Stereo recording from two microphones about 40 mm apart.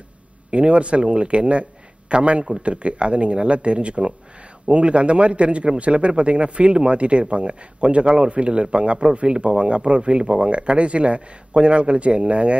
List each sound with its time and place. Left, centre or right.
0.5 s a man's voice: right